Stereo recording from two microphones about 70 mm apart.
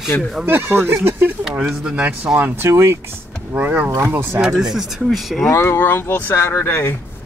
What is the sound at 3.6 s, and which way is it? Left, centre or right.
Speech, right.